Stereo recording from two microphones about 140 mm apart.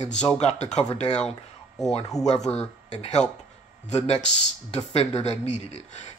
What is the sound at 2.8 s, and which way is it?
A man's voice, 55° left (ahead or behind).